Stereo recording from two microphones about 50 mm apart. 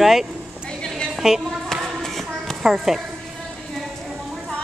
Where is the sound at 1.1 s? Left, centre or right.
Centre.